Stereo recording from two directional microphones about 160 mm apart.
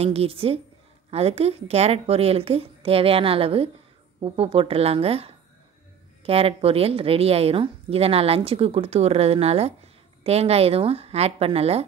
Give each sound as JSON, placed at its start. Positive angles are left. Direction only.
{"t": 0.0, "sound": "a woman's voice", "side_deg": -40}